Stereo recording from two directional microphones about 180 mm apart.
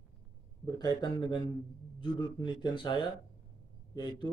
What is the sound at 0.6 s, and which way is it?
A man's voice, 20° left (ahead or behind).